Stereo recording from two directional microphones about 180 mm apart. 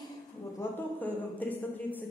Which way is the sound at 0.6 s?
10° left (ahead or behind).